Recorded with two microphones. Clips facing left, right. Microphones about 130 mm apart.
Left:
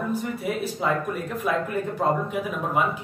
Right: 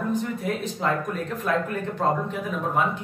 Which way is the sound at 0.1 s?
5° left (ahead or behind).